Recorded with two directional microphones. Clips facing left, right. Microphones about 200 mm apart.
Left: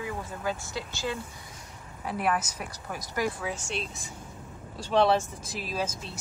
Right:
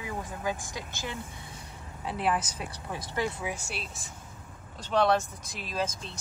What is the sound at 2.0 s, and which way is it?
Speech, 30° right (ahead or behind).